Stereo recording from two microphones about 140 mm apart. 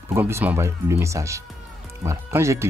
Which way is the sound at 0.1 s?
15° right (ahead or behind).